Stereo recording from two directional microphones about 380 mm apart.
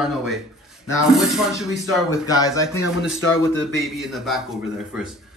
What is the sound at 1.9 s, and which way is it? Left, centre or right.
Speech, centre.